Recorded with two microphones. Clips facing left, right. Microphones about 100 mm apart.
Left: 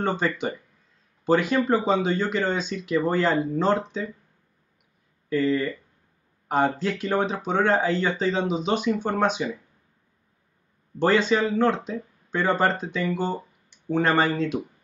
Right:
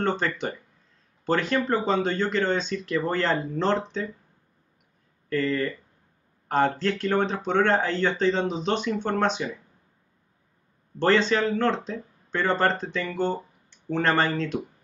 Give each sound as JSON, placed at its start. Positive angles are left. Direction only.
{"t": 0.0, "sound": "speech", "side_deg": 5}
{"t": 5.3, "sound": "speech", "side_deg": 5}
{"t": 11.0, "sound": "speech", "side_deg": 5}